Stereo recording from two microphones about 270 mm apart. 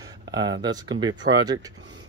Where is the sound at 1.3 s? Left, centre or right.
Right.